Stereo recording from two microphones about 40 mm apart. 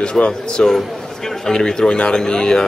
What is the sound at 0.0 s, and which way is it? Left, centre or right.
Speech, left.